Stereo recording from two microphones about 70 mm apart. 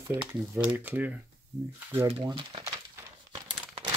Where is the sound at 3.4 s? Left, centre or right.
Right.